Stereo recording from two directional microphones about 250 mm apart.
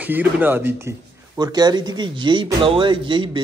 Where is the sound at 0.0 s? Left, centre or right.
Centre.